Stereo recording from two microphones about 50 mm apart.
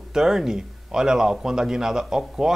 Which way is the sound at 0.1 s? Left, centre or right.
Centre.